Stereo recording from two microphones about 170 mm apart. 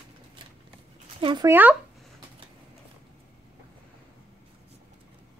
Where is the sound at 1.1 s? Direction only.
30° right (ahead or behind).